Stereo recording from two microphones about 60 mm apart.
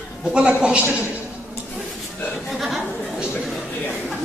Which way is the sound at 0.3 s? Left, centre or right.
Centre.